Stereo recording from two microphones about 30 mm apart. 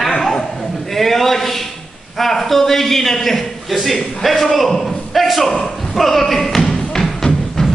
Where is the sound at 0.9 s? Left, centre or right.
Centre.